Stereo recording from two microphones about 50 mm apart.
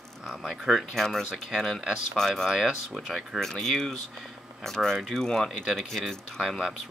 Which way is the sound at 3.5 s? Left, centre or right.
Centre.